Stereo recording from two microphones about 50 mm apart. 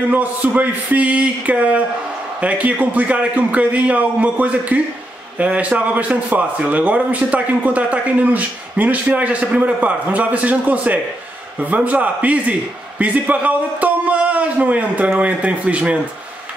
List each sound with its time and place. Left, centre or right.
0.1 s a man's voice: right